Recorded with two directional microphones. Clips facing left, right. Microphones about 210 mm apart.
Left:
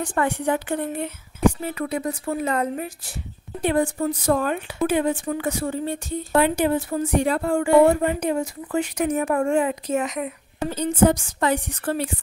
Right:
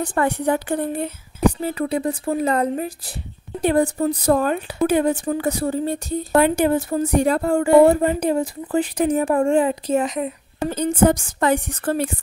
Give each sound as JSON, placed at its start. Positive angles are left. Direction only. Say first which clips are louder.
{"t": 0.0, "sound": "speech", "louder": "right 3 dB", "side_deg": -40}
{"t": 10.7, "sound": "a woman's voice", "louder": "right 2 dB", "side_deg": -50}